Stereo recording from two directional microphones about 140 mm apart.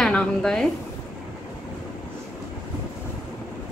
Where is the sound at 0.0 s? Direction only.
5° left (ahead or behind).